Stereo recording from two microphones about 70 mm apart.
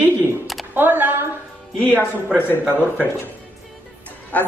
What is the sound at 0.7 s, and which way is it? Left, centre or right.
Speech, right.